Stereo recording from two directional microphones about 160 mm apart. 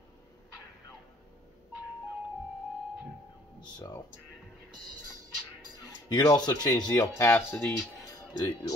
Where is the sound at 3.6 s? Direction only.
25° left (ahead or behind).